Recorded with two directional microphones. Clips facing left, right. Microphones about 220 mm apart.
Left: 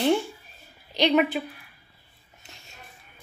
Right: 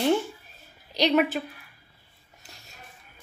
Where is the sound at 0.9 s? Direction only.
Centre (ahead or behind).